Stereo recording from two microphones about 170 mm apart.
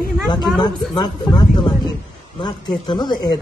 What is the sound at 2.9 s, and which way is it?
Speech, 25° left (ahead or behind).